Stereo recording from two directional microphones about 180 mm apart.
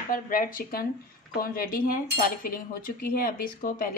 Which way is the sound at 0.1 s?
50° left (ahead or behind).